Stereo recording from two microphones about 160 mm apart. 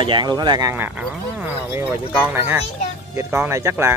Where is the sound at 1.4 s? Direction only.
10° right (ahead or behind).